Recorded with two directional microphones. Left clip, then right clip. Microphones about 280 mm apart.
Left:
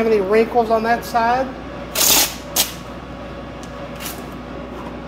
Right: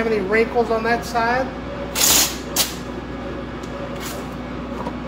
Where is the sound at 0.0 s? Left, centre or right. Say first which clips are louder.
Left 3 dB; left.